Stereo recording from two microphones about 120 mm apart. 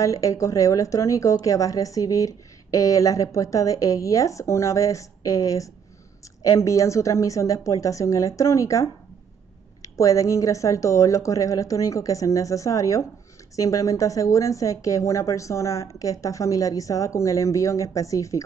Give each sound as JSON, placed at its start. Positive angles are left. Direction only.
{"t": 0.0, "sound": "a woman's voice", "side_deg": 30}